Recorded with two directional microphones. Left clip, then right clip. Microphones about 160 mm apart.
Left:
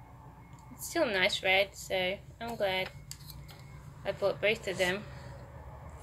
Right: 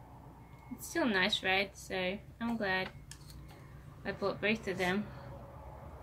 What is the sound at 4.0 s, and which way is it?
Speech, 20° right (ahead or behind).